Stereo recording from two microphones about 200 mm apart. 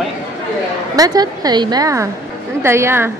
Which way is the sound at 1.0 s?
20° right (ahead or behind).